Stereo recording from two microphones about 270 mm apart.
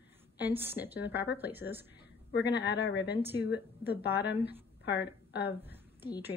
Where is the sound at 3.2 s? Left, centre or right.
Centre.